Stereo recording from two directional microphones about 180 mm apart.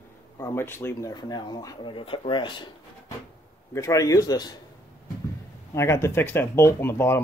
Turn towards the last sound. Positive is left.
turn(degrees=15)  # may be behind; listen again after turning